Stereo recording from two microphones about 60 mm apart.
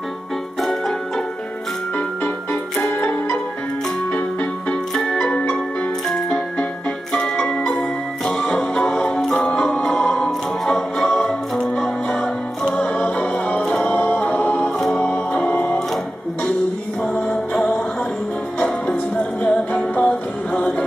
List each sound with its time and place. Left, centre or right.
0.6 s music: centre
2.0 s music: left
5.0 s music: centre
9.2 s music: centre
13.8 s music: left
17.1 s music: centre
18.6 s music: centre